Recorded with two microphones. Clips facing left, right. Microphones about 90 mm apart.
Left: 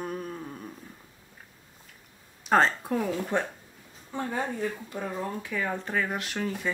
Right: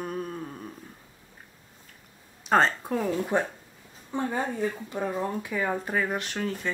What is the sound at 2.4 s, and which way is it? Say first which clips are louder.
Speech: even; centre (ahead or behind).